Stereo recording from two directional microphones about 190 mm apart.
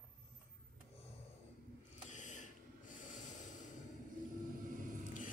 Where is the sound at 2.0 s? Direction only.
40° left (ahead or behind).